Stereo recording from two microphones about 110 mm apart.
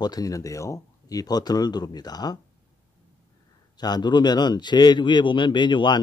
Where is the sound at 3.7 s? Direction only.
40° left (ahead or behind).